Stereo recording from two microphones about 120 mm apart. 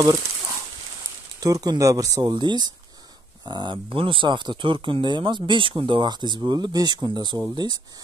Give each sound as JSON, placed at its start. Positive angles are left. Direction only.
{"t": 1.4, "sound": "speech", "side_deg": -30}